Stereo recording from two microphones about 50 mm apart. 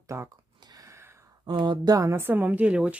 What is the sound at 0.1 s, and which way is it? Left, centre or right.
Speech, right.